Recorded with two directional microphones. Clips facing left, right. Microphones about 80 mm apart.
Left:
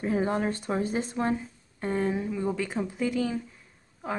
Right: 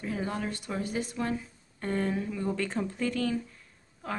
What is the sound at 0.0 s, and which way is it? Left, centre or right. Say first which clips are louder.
Speech: left 6 dB; left.